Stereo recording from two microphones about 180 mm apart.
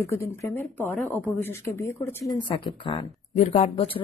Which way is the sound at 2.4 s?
30° left (ahead or behind).